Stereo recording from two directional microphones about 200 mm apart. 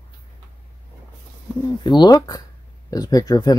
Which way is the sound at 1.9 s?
20° left (ahead or behind).